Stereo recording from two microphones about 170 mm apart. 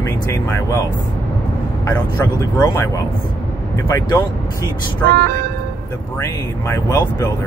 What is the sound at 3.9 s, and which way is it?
Speech, 20° left (ahead or behind).